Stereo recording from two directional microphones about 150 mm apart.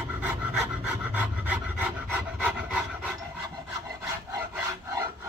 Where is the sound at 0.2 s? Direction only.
10° right (ahead or behind).